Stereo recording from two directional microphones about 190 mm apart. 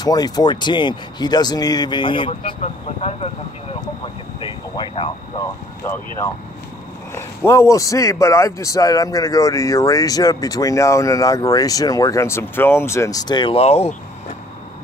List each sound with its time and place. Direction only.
0.0 s speech: 20° left (ahead or behind)